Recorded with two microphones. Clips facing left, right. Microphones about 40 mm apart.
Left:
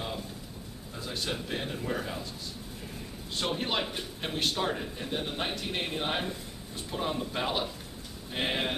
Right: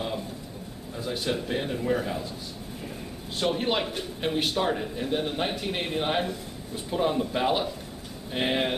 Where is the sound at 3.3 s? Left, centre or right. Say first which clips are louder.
Right 5 dB; centre.